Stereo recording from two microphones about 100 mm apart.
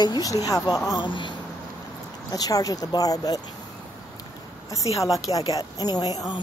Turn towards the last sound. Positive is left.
turn(degrees=45)  # may be behind; listen again after turning